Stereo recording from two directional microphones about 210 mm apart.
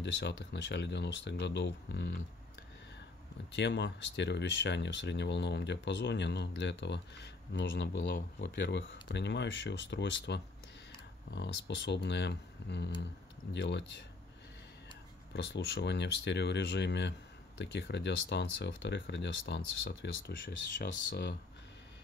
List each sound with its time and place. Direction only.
0.0 s speech: 55° left (ahead or behind)
3.5 s speech: 55° left (ahead or behind)
15.3 s speech: 55° left (ahead or behind)